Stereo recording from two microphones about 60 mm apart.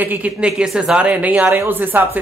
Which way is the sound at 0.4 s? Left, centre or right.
Centre.